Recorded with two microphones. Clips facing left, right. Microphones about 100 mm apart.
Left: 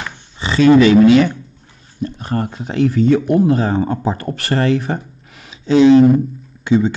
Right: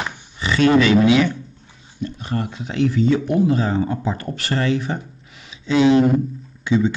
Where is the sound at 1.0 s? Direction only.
50° left (ahead or behind).